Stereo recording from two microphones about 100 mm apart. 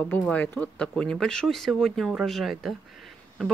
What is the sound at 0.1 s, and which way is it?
Speech, 15° left (ahead or behind).